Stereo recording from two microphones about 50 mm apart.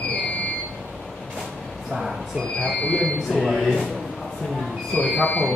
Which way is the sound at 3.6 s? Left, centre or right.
Centre.